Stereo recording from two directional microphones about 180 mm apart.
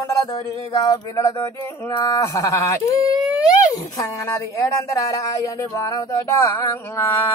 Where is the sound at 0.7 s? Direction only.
20° left (ahead or behind).